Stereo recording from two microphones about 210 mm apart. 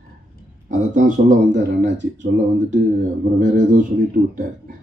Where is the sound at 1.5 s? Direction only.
55° right (ahead or behind).